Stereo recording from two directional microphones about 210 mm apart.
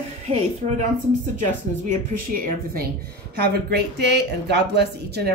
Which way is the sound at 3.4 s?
50° right (ahead or behind).